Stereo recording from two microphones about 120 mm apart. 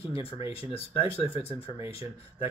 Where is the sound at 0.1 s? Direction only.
50° left (ahead or behind).